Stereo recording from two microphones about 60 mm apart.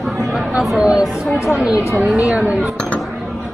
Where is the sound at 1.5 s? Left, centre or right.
Centre.